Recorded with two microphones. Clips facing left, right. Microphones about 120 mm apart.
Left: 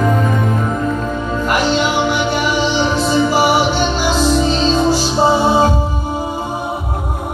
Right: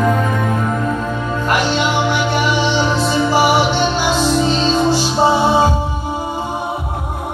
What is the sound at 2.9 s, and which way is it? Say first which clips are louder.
Music: left 1 dB; 5° left (ahead or behind).